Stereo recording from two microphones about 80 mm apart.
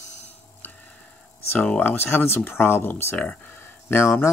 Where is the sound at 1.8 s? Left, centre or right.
Left.